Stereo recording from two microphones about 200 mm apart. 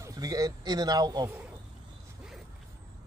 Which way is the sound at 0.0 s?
15° right (ahead or behind).